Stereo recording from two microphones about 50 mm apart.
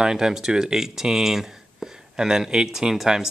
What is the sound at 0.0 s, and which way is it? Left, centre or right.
Speech, centre.